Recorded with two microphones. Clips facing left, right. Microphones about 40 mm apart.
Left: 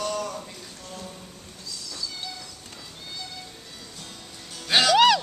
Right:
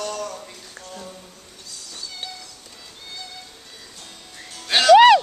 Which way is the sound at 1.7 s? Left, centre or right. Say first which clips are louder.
Left 2 dB; right.